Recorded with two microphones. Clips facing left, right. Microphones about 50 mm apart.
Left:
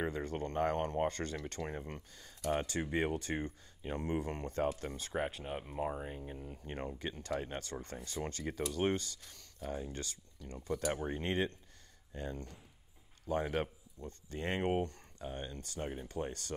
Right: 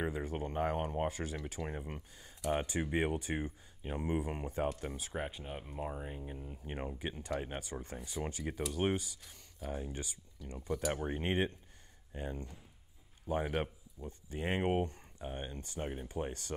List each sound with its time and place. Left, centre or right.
0.0 s speech: centre
5.4 s speech: centre
11.1 s speech: centre